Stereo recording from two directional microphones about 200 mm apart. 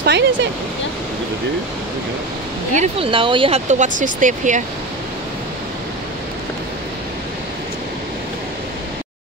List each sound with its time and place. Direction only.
0.0 s speech: 60° right (ahead or behind)
2.7 s speech: 30° right (ahead or behind)